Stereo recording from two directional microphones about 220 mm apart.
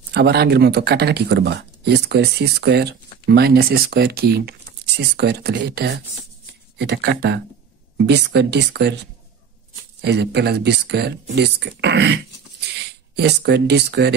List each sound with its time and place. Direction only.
0.1 s speech: 50° right (ahead or behind)
10.0 s speech: 50° right (ahead or behind)